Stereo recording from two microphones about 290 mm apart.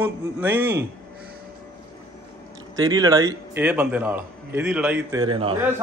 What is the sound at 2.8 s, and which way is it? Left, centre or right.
A man's voice, centre.